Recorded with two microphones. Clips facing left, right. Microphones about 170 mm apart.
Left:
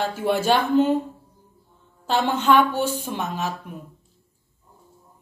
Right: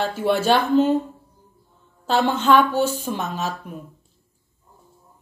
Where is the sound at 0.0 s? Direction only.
15° left (ahead or behind).